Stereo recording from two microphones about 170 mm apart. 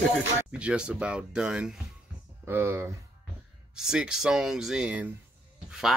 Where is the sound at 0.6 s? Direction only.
5° right (ahead or behind).